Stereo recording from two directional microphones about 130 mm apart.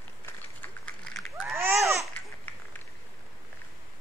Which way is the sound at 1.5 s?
20° right (ahead or behind).